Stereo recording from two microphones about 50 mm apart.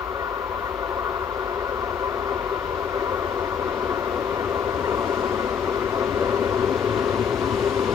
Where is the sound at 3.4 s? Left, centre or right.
Right.